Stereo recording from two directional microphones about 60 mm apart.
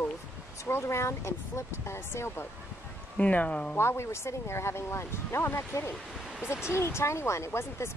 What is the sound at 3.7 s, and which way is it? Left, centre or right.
Speech, left.